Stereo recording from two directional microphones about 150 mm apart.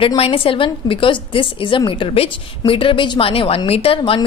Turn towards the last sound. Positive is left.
turn(degrees=35)  # may be behind; listen again after turning